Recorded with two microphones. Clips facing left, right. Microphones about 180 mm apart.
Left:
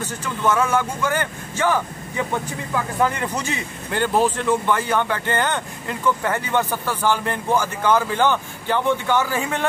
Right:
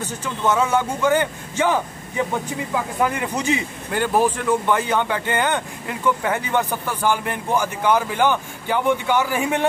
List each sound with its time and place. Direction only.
0.0 s speech: 20° right (ahead or behind)